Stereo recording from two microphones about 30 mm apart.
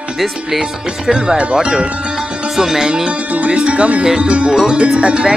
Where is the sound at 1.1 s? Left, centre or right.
Right.